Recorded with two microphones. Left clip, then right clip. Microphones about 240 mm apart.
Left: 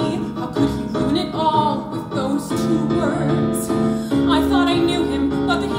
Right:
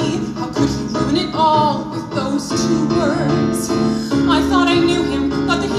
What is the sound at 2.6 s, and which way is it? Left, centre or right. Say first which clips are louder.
Music: right 4 dB; left.